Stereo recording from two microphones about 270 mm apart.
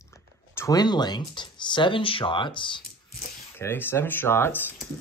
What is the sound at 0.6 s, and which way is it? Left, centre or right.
Speech, centre.